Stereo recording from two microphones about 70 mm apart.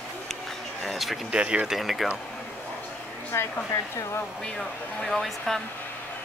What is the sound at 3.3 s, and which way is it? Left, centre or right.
Speech, left.